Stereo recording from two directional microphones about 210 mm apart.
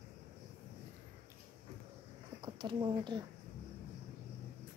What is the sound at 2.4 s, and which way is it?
Speech, 20° right (ahead or behind).